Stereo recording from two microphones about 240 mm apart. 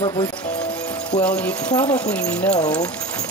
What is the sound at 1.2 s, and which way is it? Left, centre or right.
Speech, centre.